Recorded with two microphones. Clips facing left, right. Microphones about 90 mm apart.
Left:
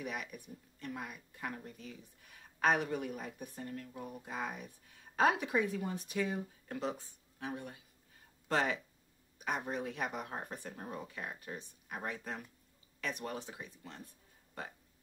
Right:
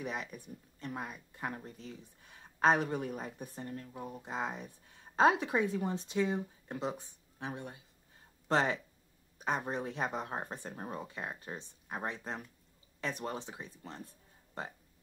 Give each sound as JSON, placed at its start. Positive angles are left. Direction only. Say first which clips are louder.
{"t": 0.0, "sound": "speech", "louder": "right 2 dB", "side_deg": -30}